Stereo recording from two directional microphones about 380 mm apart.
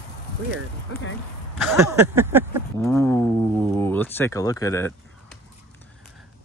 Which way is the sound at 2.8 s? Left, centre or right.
Centre.